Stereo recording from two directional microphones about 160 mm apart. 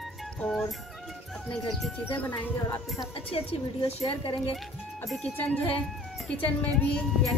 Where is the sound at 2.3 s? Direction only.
10° left (ahead or behind).